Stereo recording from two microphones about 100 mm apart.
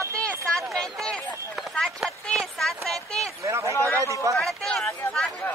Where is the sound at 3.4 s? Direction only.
30° right (ahead or behind).